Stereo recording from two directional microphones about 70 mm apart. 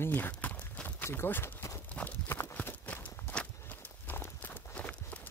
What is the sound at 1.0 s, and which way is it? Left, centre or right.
Speech, left.